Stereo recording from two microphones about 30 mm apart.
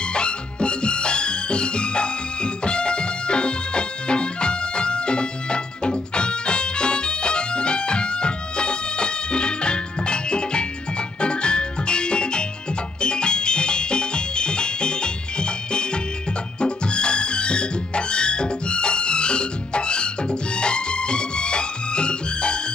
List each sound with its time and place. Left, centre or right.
0.1 s music: left